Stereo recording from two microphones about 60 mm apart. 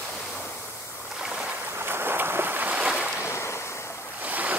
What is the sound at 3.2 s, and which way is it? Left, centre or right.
Waves, left.